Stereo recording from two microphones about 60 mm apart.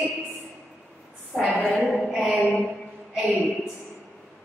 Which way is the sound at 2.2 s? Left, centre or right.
Centre.